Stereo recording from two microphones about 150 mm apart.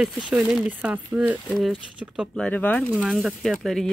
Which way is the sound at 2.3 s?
10° left (ahead or behind).